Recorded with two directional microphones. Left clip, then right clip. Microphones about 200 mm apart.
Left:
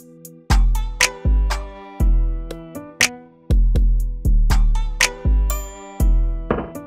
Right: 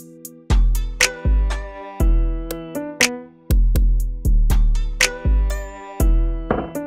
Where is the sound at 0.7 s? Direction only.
Centre (ahead or behind).